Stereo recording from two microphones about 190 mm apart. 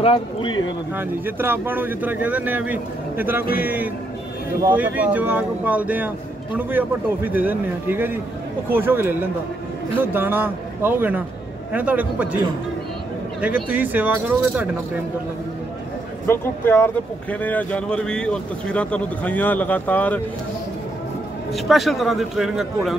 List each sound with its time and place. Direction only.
0.0 s a man's voice: 25° left (ahead or behind)
0.9 s speech: 10° right (ahead or behind)
13.4 s speech: 10° right (ahead or behind)
16.3 s speech: 10° left (ahead or behind)
21.5 s a man's voice: centre (ahead or behind)